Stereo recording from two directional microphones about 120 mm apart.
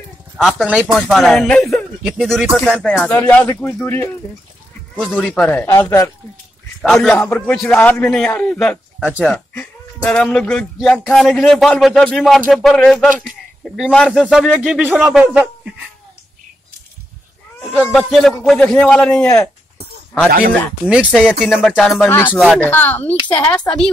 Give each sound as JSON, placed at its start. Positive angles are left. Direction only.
{"t": 0.4, "sound": "a man's voice", "side_deg": 0}
{"t": 2.9, "sound": "a man's voice", "side_deg": 15}
{"t": 6.8, "sound": "a man's voice", "side_deg": 5}
{"t": 10.0, "sound": "a man's voice", "side_deg": 5}
{"t": 17.6, "sound": "a man's voice", "side_deg": 5}
{"t": 19.2, "sound": "a man's voice", "side_deg": 25}
{"t": 20.2, "sound": "a man's voice", "side_deg": 15}
{"t": 21.1, "sound": "a man's voice", "side_deg": -5}
{"t": 22.0, "sound": "a man's voice", "side_deg": 20}